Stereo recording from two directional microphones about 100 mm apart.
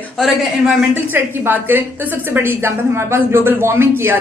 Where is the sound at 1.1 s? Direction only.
20° right (ahead or behind).